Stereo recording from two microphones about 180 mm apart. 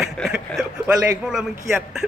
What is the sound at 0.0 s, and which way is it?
Chuckle, centre (ahead or behind).